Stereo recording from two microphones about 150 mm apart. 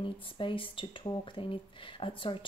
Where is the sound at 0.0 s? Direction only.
35° left (ahead or behind).